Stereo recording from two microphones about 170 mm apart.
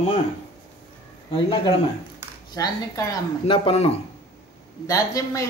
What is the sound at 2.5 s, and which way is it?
Speech, 20° left (ahead or behind).